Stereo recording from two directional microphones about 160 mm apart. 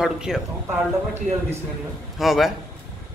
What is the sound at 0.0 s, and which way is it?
Speech, 5° right (ahead or behind).